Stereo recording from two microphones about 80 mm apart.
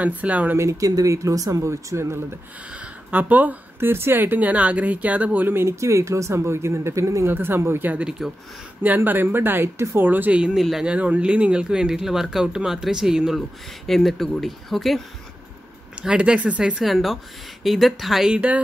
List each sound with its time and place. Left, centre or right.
0.0 s speech: centre
0.6 s speech: right
2.7 s speech: centre; by 7.2 s right
7.2 s speech: right
8.0 s speech: centre
8.8 s speech: right
10.6 s speech: centre
10.9 s speech: centre
16.0 s speech: centre
16.8 s speech: centre